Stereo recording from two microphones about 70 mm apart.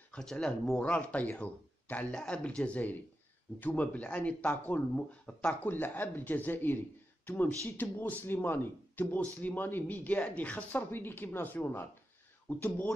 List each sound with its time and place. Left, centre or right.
0.1 s speech: centre
0.8 s speech: left